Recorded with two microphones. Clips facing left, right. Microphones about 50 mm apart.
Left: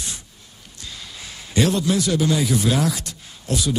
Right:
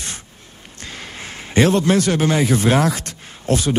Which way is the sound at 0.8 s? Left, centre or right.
Right.